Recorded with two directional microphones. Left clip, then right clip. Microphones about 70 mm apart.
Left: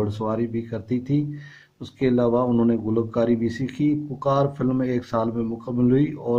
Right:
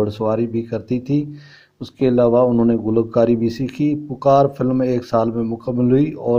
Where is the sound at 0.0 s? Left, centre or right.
Right.